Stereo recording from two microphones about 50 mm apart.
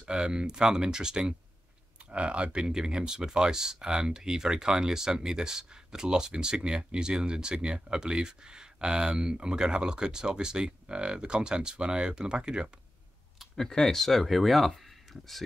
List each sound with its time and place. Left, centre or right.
0.0 s speech: centre
13.6 s speech: centre